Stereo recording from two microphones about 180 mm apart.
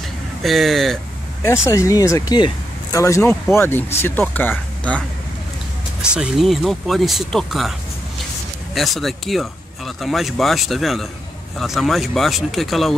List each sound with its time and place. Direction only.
0.4 s speech: centre (ahead or behind)
1.4 s speech: 15° left (ahead or behind)
6.1 s speech: centre (ahead or behind)
8.7 s speech: centre (ahead or behind)